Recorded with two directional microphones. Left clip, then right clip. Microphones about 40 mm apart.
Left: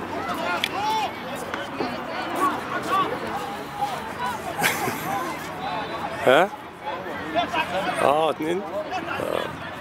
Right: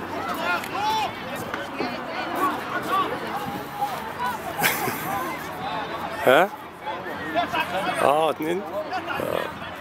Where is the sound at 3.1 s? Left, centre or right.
Right.